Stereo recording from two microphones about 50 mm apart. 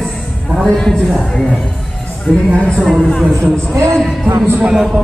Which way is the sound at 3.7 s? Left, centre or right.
Right.